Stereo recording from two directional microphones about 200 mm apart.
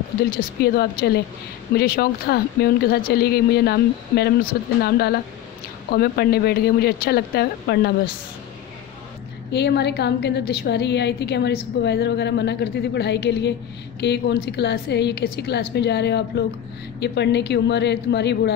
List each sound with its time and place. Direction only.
0.2 s speech: 50° left (ahead or behind)
9.5 s a woman's voice: 55° left (ahead or behind)